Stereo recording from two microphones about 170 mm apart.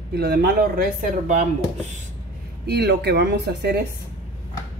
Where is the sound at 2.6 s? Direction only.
75° right (ahead or behind).